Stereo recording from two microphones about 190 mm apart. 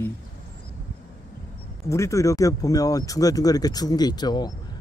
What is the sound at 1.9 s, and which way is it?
Speech, 15° left (ahead or behind).